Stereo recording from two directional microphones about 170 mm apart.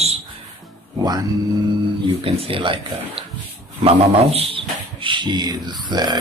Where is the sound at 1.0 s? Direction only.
25° right (ahead or behind).